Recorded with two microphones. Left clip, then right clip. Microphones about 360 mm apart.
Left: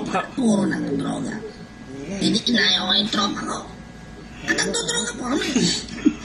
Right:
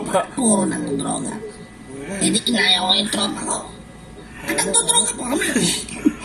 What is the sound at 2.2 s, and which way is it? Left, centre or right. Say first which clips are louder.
A woman's voice: right 1 dB; right.